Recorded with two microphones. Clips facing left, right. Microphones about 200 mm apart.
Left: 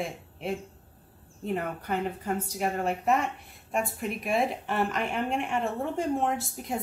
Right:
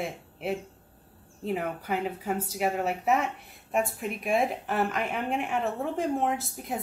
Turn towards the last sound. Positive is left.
turn(degrees=0)  # may be behind; listen again after turning